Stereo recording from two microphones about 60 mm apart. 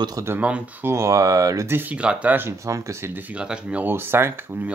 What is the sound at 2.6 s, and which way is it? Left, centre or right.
Speech, right.